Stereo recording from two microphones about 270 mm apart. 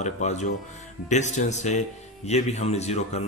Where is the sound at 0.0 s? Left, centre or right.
Left.